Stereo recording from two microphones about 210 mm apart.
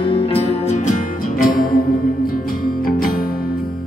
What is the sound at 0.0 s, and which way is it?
Music, 25° left (ahead or behind).